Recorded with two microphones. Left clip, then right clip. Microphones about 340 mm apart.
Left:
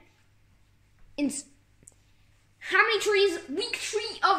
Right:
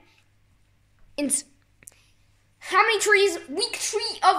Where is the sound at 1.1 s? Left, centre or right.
Right.